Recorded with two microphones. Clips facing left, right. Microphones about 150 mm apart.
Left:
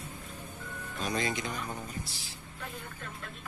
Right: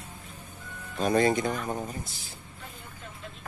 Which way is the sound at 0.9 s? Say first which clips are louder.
Right 10 dB; 50° right (ahead or behind).